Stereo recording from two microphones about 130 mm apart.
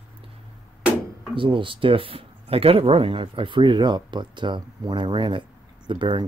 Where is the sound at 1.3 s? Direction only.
40° right (ahead or behind).